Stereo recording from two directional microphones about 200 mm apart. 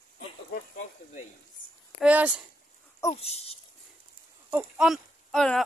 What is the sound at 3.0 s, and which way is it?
Speech, 25° left (ahead or behind).